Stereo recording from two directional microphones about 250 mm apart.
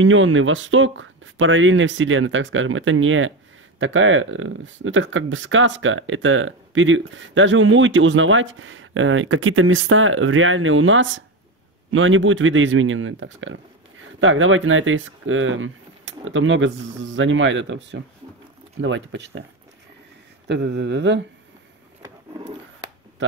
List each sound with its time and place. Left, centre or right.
0.0 s speech: right
20.4 s speech: right